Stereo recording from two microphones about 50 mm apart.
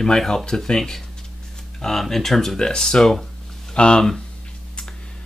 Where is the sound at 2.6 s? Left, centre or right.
Centre.